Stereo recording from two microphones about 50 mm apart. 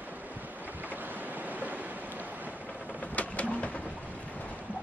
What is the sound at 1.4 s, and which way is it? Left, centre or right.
Waves, right.